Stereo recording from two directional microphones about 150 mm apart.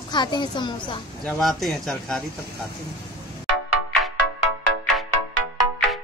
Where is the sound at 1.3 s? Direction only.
Centre (ahead or behind).